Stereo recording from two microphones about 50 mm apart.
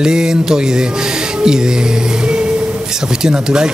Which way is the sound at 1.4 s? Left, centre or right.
Centre.